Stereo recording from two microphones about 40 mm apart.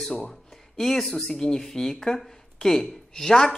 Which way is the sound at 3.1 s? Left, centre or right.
Centre.